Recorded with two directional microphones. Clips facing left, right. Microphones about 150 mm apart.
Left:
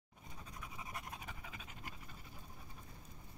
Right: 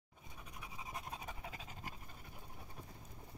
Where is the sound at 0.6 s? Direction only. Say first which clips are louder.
Right 1 dB; 20° right (ahead or behind).